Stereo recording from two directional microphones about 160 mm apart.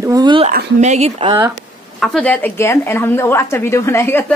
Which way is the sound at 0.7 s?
45° right (ahead or behind).